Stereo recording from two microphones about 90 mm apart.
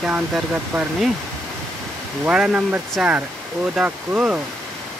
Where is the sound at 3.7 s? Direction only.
15° right (ahead or behind).